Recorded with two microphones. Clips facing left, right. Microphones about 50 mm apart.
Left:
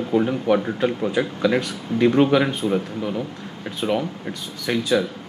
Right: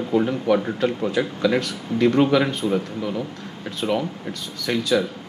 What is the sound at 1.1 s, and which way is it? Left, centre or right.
Speech, centre.